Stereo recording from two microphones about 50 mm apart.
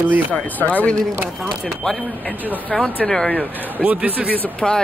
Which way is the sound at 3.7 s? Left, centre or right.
Right.